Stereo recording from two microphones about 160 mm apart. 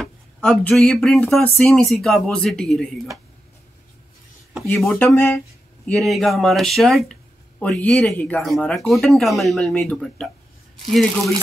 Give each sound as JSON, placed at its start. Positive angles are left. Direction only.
{"t": 0.0, "sound": "speech", "side_deg": 5}
{"t": 4.6, "sound": "speech", "side_deg": 0}
{"t": 4.9, "sound": "speech", "side_deg": 15}
{"t": 6.0, "sound": "speech", "side_deg": 0}
{"t": 10.9, "sound": "speech", "side_deg": 0}